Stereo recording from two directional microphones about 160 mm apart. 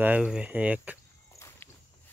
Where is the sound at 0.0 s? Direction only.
5° right (ahead or behind).